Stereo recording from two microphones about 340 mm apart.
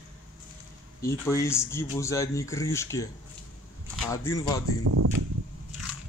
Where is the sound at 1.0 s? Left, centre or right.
Centre.